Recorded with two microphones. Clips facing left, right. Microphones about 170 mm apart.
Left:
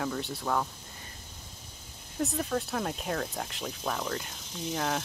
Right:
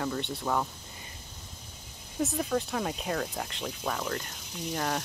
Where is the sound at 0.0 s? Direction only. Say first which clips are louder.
Right 1 dB; centre (ahead or behind).